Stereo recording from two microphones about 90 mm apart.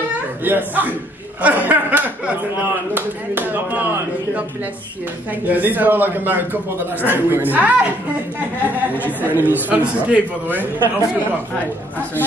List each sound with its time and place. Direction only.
0.5 s a man's voice: 20° right (ahead or behind)
1.4 s chuckle: 15° right (ahead or behind)
2.9 s a man's voice: 20° right (ahead or behind)
5.5 s a man's voice: 20° right (ahead or behind)
9.0 s a man's voice: 20° right (ahead or behind)